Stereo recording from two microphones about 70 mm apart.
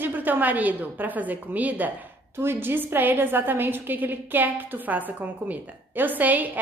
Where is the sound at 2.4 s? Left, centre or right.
Right.